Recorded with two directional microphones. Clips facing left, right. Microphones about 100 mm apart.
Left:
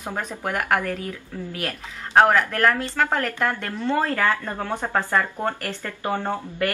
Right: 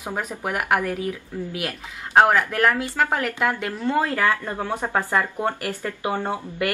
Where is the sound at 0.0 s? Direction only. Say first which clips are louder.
Right 1 dB; 10° right (ahead or behind).